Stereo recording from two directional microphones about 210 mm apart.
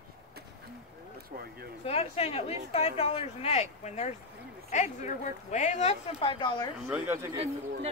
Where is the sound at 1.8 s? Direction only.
30° left (ahead or behind).